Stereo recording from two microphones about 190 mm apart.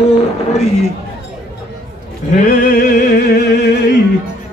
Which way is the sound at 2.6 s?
55° left (ahead or behind).